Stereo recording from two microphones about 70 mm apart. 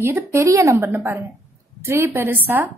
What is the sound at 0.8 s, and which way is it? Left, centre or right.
A woman's voice, right.